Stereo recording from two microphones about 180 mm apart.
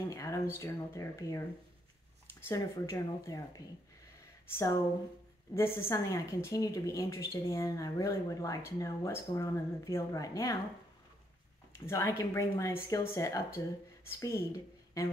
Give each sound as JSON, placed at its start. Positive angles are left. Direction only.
{"t": 0.1, "sound": "a sound", "side_deg": 15}
{"t": 0.6, "sound": "a woman's voice", "side_deg": 15}
{"t": 2.4, "sound": "a woman's voice", "side_deg": 15}
{"t": 11.8, "sound": "a woman's voice", "side_deg": 15}